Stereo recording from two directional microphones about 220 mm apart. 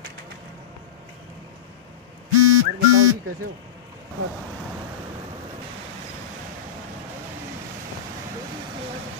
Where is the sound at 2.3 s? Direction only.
90° right.